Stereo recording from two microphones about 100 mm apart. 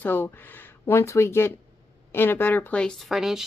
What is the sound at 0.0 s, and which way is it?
Speech, 20° left (ahead or behind).